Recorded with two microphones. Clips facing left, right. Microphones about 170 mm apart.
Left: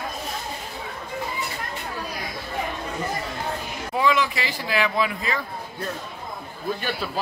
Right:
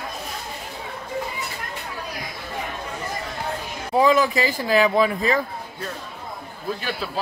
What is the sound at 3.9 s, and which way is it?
A man's voice, 40° right (ahead or behind).